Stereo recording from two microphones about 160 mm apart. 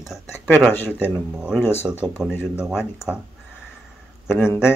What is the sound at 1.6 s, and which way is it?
Speech, 15° left (ahead or behind).